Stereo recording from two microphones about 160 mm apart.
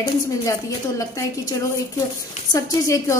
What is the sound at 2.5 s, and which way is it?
Speech, 20° left (ahead or behind).